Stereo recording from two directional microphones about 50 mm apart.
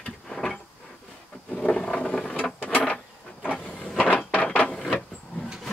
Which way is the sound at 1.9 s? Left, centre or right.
Left.